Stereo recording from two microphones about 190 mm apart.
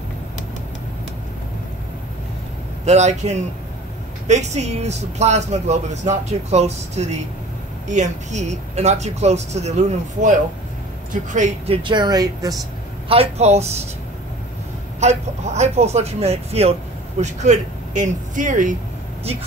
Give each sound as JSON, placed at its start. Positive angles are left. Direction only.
{"t": 2.8, "sound": "speech", "side_deg": -35}
{"t": 11.3, "sound": "speech", "side_deg": -35}
{"t": 13.1, "sound": "speech", "side_deg": -30}
{"t": 15.0, "sound": "speech", "side_deg": -35}